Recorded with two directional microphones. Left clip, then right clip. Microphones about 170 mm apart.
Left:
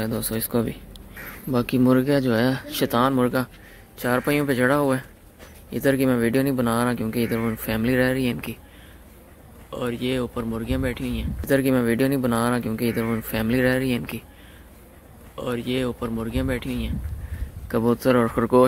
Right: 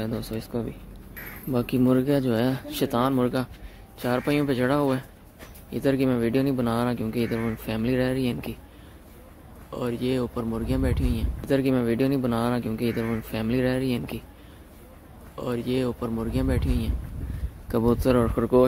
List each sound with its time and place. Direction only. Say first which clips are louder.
0.0 s speech: left 4 dB; 15° left (ahead or behind)
1.5 s speech: left 3 dB; 5° left (ahead or behind)
9.7 s speech: left 1 dB; centre (ahead or behind)
11.4 s speech: left 3 dB; 10° left (ahead or behind)
15.3 s speech: left 1 dB; centre (ahead or behind)